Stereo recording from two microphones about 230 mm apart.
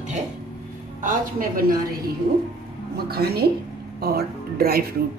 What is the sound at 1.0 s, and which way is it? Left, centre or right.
Speech, right.